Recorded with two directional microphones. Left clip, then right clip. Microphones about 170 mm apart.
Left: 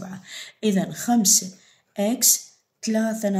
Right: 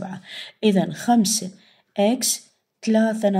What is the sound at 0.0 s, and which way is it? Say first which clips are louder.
Speech: right 3 dB; 40° right (ahead or behind).